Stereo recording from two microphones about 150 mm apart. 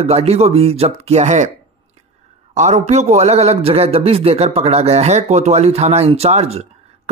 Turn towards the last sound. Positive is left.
turn(degrees=-45)  # may be behind; listen again after turning